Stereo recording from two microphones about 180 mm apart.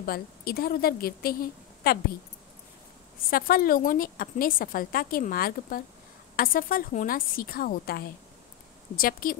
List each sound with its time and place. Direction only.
0.0 s a woman's voice: 55° left (ahead or behind)
3.3 s a woman's voice: 55° left (ahead or behind)